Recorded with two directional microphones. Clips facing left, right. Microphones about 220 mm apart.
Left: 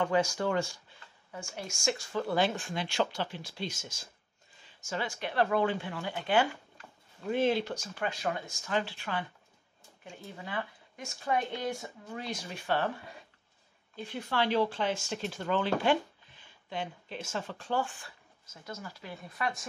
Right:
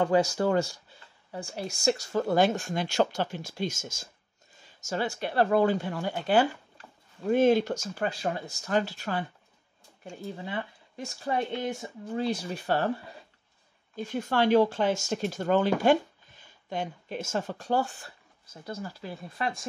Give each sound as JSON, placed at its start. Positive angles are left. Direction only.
{"t": 0.0, "sound": "speech", "side_deg": -35}
{"t": 10.3, "sound": "speech", "side_deg": -25}
{"t": 11.5, "sound": "speech", "side_deg": -20}
{"t": 13.9, "sound": "speech", "side_deg": -45}